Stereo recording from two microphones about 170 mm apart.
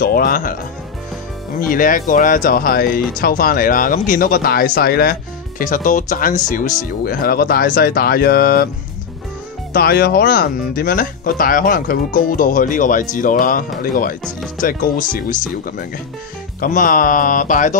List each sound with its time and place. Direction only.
0.0 s speech: 60° left (ahead or behind)
1.6 s speech: 55° left (ahead or behind)
5.6 s speech: 50° left (ahead or behind)
9.7 s speech: 60° left (ahead or behind)